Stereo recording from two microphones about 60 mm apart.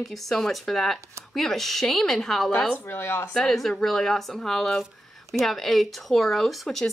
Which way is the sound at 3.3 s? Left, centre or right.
Centre.